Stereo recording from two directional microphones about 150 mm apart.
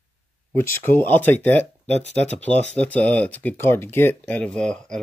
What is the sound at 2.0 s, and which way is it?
Speech, 50° left (ahead or behind).